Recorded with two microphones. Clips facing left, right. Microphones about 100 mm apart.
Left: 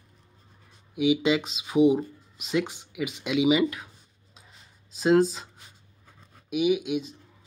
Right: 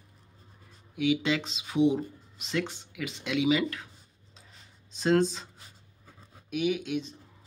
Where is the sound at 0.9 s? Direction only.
15° left (ahead or behind).